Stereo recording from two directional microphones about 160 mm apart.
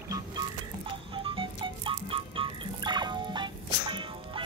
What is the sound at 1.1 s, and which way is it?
Music, 30° right (ahead or behind).